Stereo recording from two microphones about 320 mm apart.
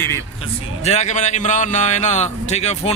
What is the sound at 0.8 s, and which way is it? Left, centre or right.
A man's voice, left.